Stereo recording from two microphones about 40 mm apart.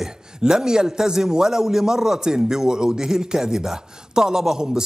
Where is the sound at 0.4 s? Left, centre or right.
Centre.